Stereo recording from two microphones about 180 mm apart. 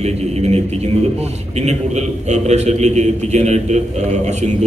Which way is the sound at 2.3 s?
40° right (ahead or behind).